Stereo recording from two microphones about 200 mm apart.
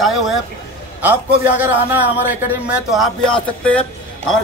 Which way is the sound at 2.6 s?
Centre (ahead or behind).